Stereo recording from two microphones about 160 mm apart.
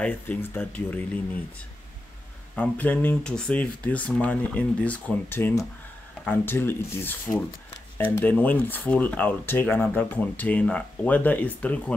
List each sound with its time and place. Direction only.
0.0 s speech: 10° left (ahead or behind)
2.5 s speech: 10° left (ahead or behind)